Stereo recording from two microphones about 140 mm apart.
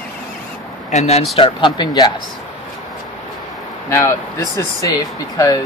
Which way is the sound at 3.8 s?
20° left (ahead or behind).